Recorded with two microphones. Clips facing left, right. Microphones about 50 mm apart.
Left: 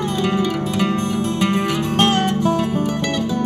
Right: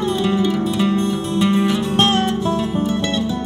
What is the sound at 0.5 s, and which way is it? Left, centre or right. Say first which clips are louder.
Music: right 2 dB; left.